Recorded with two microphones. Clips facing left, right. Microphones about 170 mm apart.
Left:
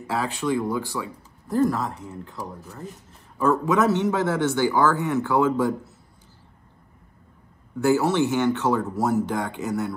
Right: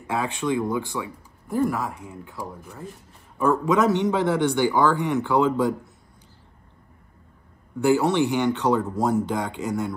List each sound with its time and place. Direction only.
0.1 s speech: 15° right (ahead or behind)
7.8 s speech: 15° right (ahead or behind)